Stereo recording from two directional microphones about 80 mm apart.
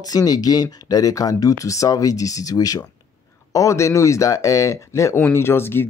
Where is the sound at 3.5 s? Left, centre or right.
Left.